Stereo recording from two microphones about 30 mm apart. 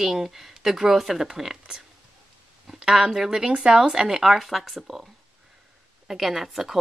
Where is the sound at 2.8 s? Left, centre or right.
Right.